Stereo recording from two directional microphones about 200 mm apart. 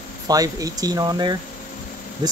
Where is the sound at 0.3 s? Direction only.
15° right (ahead or behind).